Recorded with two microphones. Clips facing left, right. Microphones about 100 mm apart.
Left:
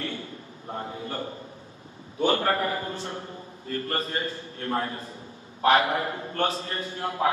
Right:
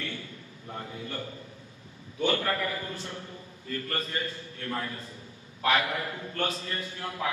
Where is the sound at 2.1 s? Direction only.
35° left (ahead or behind).